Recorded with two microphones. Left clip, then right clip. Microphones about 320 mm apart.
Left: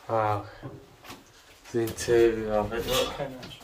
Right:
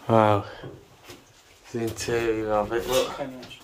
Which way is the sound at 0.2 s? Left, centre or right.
Right.